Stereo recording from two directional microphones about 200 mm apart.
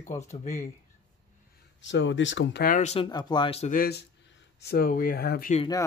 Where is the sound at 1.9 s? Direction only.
65° left (ahead or behind).